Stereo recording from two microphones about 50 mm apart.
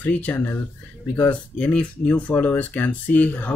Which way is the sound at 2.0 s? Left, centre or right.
Left.